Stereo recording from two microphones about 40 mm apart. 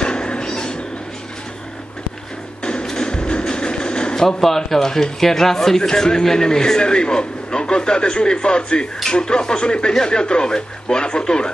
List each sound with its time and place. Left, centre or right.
0.0 s cat: left
2.6 s speech: left